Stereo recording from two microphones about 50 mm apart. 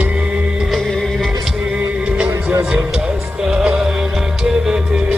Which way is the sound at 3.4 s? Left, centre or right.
Centre.